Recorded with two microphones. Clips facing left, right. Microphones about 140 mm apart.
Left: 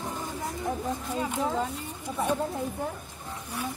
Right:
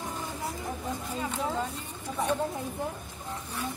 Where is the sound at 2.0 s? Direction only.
10° left (ahead or behind).